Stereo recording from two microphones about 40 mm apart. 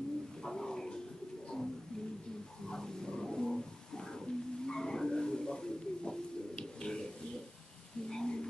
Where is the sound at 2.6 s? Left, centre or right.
Centre.